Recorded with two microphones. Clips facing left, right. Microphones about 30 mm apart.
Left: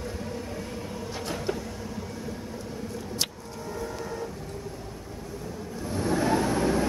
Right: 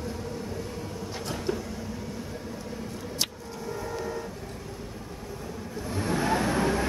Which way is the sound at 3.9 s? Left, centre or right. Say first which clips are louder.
Right 2 dB; centre.